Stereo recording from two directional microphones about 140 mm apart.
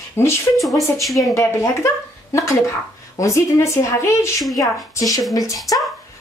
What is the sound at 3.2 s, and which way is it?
Speech, 20° left (ahead or behind).